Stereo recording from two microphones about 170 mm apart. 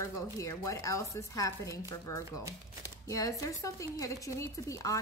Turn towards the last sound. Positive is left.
turn(degrees=20)  # may be behind; listen again after turning